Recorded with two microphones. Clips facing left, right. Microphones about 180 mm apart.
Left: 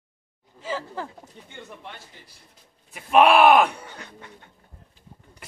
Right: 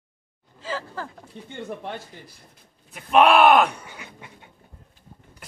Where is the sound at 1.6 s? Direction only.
55° right (ahead or behind).